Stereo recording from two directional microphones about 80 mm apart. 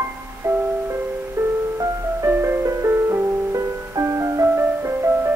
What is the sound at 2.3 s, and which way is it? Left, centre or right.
Music, right.